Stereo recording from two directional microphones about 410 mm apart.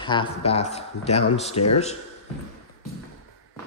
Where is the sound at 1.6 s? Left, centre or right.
Left.